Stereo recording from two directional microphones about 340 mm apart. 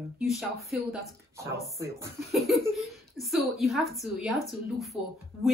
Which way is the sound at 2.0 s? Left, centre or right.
Centre.